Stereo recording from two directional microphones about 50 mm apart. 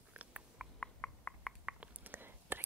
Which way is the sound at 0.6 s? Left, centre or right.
Centre.